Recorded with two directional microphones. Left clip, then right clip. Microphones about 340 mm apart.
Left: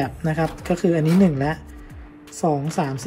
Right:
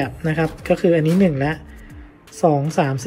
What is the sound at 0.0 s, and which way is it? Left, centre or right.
Speech, centre.